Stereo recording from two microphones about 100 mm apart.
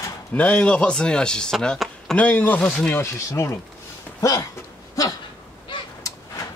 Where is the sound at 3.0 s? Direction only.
30° left (ahead or behind).